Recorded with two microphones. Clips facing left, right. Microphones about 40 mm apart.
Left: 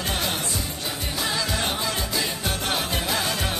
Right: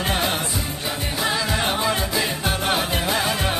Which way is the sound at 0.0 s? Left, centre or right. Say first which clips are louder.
Right 4 dB; right.